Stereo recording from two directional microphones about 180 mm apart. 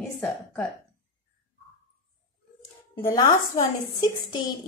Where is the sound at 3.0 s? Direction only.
20° left (ahead or behind).